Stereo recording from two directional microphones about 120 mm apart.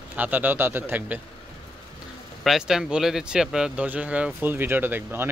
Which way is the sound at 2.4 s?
5° right (ahead or behind).